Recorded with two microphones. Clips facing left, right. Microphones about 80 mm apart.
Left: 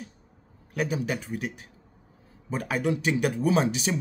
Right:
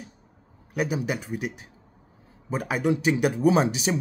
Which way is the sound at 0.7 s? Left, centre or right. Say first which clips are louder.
Right 1 dB; centre.